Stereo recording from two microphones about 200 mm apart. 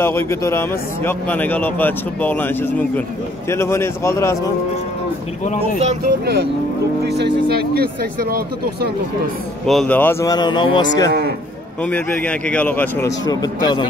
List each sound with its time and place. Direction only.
0.0 s a man's voice: 10° left (ahead or behind)
5.4 s speech: 35° left (ahead or behind)
6.2 s speech: 50° right (ahead or behind)
9.7 s a man's voice: 5° left (ahead or behind); by 11.1 s 25° left (ahead or behind)
11.1 s speech: 55° right (ahead or behind)
11.8 s a man's voice: 5° left (ahead or behind)
13.3 s speech: 20° left (ahead or behind)